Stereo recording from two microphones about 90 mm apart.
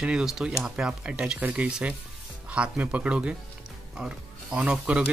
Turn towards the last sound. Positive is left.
turn(degrees=-10)  # may be behind; listen again after turning